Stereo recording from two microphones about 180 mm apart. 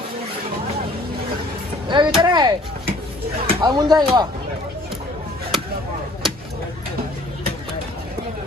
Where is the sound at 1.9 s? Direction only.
25° right (ahead or behind).